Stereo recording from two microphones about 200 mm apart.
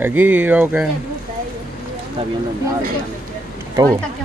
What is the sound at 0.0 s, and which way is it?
Speech, 10° right (ahead or behind).